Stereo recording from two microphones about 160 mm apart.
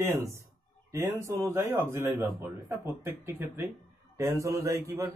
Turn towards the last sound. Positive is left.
turn(degrees=-20)  # may be behind; listen again after turning